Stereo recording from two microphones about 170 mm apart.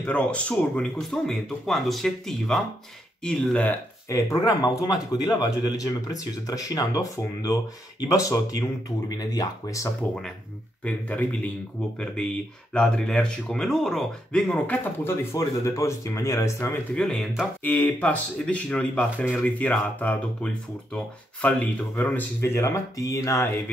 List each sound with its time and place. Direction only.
0.0 s speech: 5° left (ahead or behind)
10.8 s speech: 10° left (ahead or behind)
12.7 s speech: 5° left (ahead or behind)
16.9 s speech: 5° left (ahead or behind)